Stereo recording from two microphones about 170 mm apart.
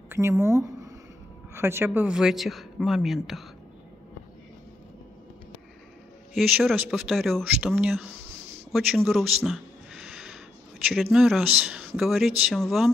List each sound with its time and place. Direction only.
0.1 s speech: 15° right (ahead or behind)
6.3 s speech: centre (ahead or behind)
9.4 s a sound: centre (ahead or behind)
10.9 s speech: 5° right (ahead or behind)